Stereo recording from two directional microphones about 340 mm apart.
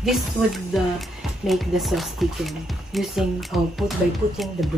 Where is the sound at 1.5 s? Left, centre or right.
Centre.